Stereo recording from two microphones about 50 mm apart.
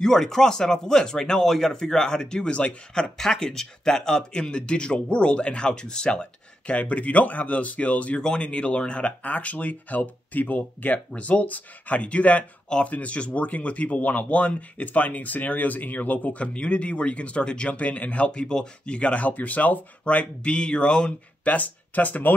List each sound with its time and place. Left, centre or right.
0.0 s speech: centre; by 16.4 s left
16.5 s speech: left
21.5 s speech: left